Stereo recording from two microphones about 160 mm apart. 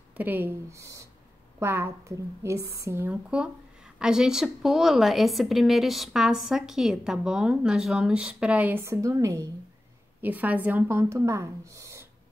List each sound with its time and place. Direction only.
0.2 s a woman's voice: 10° right (ahead or behind)